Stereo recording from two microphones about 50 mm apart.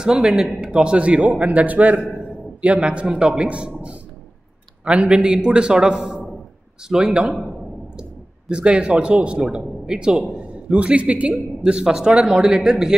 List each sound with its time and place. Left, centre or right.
0.0 s a man's voice: centre
0.6 s a man's voice: centre
8.5 s a man's voice: centre
11.6 s a man's voice: centre